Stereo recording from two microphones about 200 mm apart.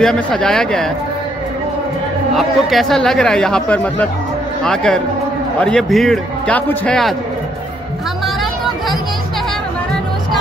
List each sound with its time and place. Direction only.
0.0 s speech: centre (ahead or behind)
2.3 s speech: centre (ahead or behind)